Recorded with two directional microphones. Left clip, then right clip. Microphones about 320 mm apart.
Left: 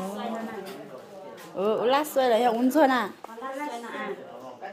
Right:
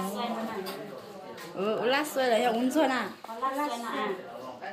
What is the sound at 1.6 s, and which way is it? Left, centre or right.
A woman's voice, centre.